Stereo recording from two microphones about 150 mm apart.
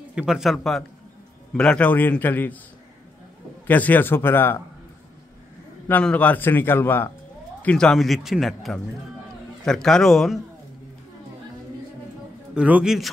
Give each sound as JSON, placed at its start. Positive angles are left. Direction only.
{"t": 0.1, "sound": "a man's voice", "side_deg": -5}
{"t": 3.6, "sound": "a man's voice", "side_deg": 10}
{"t": 5.9, "sound": "a man's voice", "side_deg": 10}
{"t": 12.5, "sound": "speech", "side_deg": -10}